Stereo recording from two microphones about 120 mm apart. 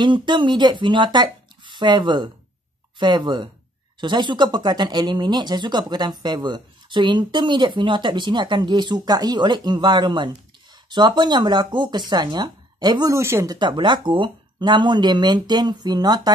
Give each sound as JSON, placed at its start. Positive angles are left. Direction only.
{"t": 0.0, "sound": "speech", "side_deg": -40}
{"t": 13.1, "sound": "speech", "side_deg": -20}
{"t": 13.6, "sound": "speech", "side_deg": -40}